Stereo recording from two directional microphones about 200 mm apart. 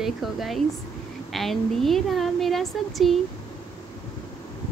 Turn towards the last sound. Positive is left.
turn(degrees=0)  # may be behind; listen again after turning